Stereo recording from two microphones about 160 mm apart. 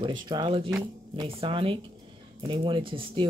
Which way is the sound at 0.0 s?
30° right (ahead or behind).